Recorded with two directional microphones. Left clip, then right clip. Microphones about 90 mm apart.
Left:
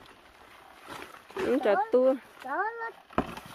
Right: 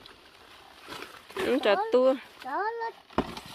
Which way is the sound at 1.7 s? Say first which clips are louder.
Right 1 dB; 30° left (ahead or behind).